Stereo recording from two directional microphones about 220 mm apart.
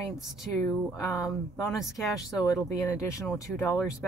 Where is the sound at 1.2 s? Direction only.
15° left (ahead or behind).